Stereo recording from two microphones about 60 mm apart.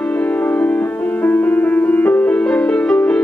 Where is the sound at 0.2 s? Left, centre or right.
Left.